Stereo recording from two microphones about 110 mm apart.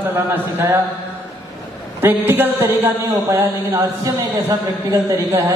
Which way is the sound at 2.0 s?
20° right (ahead or behind).